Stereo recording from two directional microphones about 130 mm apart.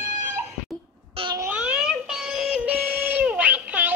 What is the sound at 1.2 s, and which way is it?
Babbling, 45° right (ahead or behind).